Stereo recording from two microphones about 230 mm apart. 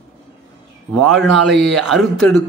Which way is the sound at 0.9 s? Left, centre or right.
Centre.